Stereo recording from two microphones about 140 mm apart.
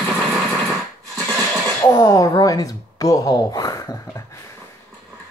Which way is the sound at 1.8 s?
25° left (ahead or behind).